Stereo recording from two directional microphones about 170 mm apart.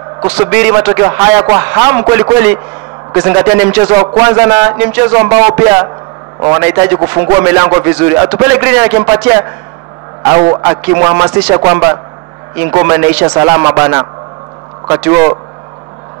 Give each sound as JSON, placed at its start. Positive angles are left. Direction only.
{"t": 0.5, "sound": "a man's voice", "side_deg": -10}